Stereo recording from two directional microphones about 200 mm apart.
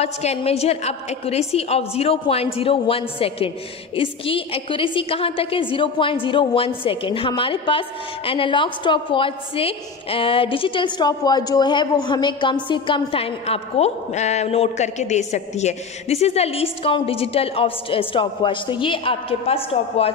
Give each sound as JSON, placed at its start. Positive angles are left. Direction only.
{"t": 0.0, "sound": "a woman's voice", "side_deg": 30}